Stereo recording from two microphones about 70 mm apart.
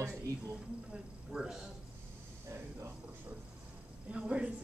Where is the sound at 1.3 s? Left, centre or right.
Centre.